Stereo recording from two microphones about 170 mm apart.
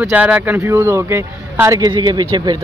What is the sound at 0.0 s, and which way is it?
A man's voice, 10° right (ahead or behind).